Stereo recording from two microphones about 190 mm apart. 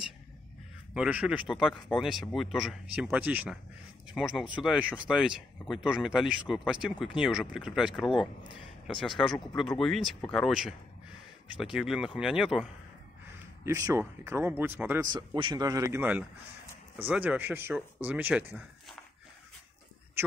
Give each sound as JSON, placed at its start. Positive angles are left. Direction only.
{"t": 0.9, "sound": "speech", "side_deg": -5}
{"t": 13.7, "sound": "speech", "side_deg": -15}
{"t": 15.1, "sound": "speech", "side_deg": -25}